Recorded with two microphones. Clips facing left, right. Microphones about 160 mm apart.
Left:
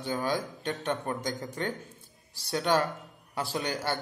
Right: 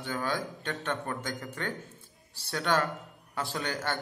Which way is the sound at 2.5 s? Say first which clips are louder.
Left 2 dB; 15° left (ahead or behind).